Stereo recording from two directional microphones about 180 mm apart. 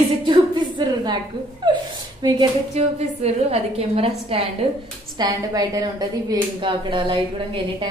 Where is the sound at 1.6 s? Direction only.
25° right (ahead or behind).